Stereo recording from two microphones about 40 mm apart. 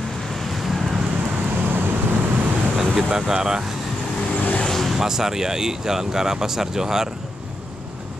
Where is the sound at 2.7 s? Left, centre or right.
Centre.